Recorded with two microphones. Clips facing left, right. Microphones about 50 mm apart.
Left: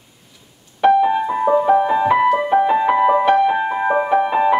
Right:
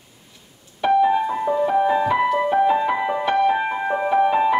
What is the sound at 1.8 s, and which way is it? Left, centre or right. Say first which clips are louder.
Music: left 3 dB; centre.